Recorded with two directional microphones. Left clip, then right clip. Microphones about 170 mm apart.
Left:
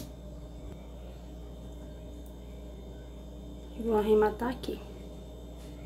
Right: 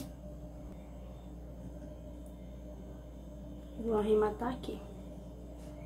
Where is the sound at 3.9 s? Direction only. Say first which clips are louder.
Left 4 dB; 10° left (ahead or behind).